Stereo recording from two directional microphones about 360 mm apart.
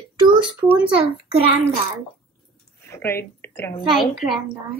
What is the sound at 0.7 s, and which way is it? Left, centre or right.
Speech, centre.